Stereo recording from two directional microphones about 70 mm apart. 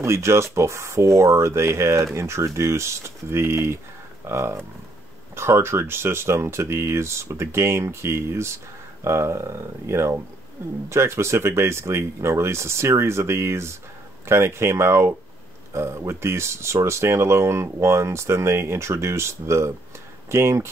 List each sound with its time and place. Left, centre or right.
0.0 s speech: right